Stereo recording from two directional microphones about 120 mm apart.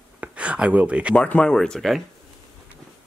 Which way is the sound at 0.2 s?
10° right (ahead or behind).